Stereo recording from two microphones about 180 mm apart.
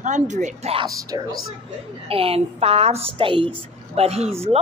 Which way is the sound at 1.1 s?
20° right (ahead or behind).